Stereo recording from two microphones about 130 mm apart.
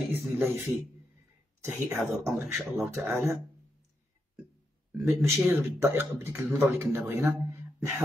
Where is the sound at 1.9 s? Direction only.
Centre (ahead or behind).